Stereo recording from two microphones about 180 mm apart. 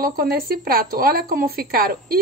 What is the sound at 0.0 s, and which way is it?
Speech, 55° right (ahead or behind).